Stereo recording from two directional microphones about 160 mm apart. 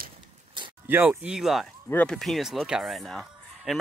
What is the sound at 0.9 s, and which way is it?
Speech, 10° right (ahead or behind).